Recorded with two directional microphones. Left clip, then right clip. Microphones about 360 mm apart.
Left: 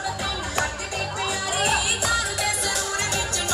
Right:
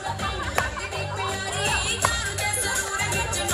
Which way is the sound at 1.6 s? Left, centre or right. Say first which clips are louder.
Left 1 dB; left.